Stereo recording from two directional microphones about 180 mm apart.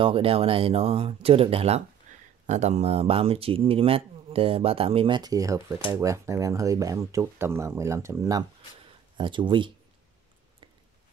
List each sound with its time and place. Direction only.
0.0 s speech: 30° right (ahead or behind)
2.1 s a sound: 45° right (ahead or behind)
2.4 s speech: 40° right (ahead or behind)